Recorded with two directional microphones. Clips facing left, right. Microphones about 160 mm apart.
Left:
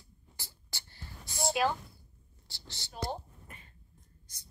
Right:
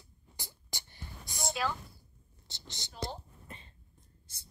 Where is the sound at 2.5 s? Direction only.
20° right (ahead or behind).